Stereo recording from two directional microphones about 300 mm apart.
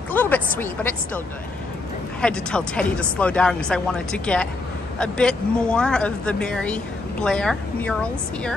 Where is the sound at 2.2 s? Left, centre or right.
Centre.